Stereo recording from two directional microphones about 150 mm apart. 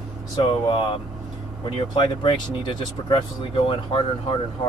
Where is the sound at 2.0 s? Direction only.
30° left (ahead or behind).